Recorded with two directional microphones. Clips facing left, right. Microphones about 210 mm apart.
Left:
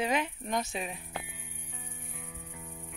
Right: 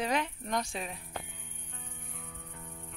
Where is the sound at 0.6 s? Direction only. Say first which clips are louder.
Left 2 dB; 20° left (ahead or behind).